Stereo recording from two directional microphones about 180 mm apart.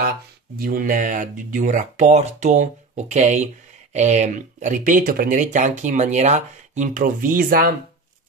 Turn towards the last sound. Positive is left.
turn(degrees=-50)  # may be behind; listen again after turning